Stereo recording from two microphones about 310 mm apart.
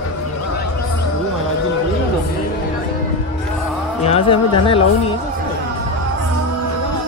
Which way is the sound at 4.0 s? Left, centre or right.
Centre.